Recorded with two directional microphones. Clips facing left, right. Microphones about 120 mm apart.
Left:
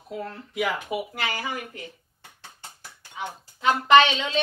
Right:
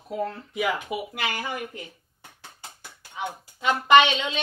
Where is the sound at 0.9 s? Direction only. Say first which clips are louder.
Left 2 dB; 25° left (ahead or behind).